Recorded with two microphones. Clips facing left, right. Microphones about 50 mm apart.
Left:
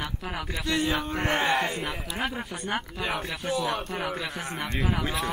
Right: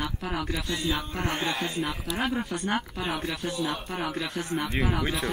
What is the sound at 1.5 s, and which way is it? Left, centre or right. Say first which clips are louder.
Speech: left 4 dB; left.